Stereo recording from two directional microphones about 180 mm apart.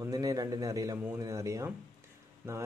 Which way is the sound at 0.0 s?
20° right (ahead or behind).